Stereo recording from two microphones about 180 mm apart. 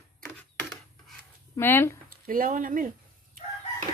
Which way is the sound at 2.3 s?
50° right (ahead or behind).